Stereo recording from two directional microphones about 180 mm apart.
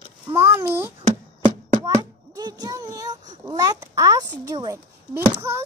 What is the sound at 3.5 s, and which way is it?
Speech, 20° right (ahead or behind).